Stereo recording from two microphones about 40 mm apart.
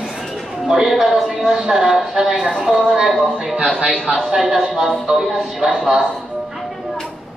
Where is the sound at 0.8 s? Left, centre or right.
Centre.